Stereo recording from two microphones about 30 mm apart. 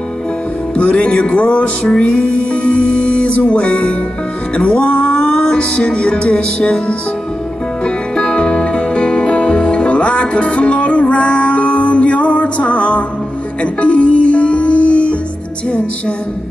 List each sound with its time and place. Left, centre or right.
0.7 s music: left
3.6 s speech: left
4.6 s music: left